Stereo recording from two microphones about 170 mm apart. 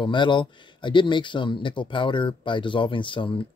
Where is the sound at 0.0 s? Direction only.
30° left (ahead or behind).